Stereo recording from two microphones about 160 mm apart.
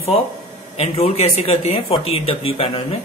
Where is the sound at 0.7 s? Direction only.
40° left (ahead or behind).